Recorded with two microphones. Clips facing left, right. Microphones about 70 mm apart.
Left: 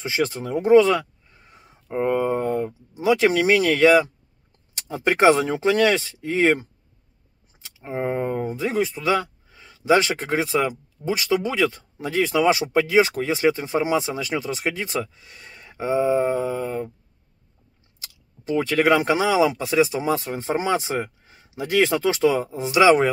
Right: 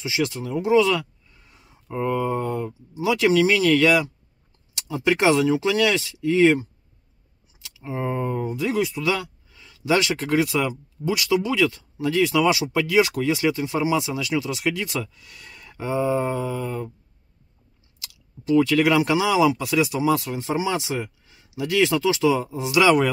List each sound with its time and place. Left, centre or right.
0.0 s speech: left
3.8 s speech: left
18.0 s speech: left